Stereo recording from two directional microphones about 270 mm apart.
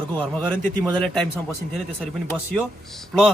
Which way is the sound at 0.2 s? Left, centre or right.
Centre.